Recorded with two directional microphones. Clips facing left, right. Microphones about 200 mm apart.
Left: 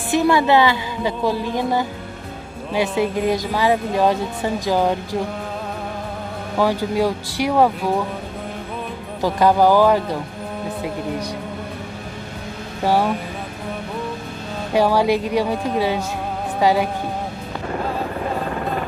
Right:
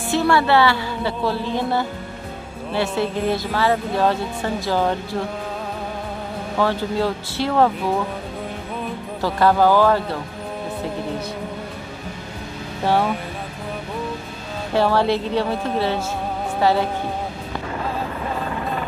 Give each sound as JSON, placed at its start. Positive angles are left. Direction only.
{"t": 0.1, "sound": "speech", "side_deg": 15}
{"t": 3.0, "sound": "speech", "side_deg": 15}
{"t": 6.6, "sound": "speech", "side_deg": 10}
{"t": 9.2, "sound": "speech", "side_deg": 15}
{"t": 12.8, "sound": "speech", "side_deg": 10}
{"t": 14.7, "sound": "speech", "side_deg": 15}
{"t": 16.5, "sound": "music", "side_deg": 15}